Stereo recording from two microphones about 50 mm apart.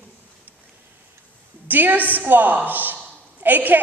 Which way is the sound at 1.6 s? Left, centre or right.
Right.